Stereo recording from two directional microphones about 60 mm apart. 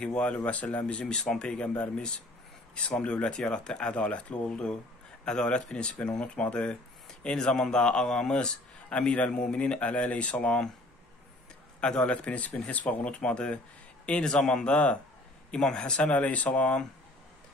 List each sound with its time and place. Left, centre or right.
0.0 s a man's voice: centre
11.8 s speech: centre